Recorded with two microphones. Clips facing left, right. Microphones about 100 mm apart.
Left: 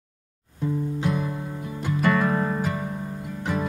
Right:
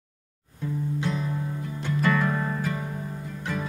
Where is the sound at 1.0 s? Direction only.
10° left (ahead or behind).